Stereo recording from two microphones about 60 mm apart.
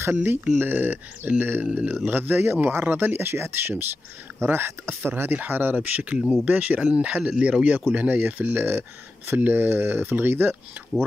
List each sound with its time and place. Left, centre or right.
0.1 s speech: right
5.8 s speech: right
6.8 s speech: centre; by 10.5 s right